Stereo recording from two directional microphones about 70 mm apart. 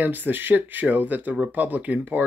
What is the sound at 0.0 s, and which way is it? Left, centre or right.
Speech, right.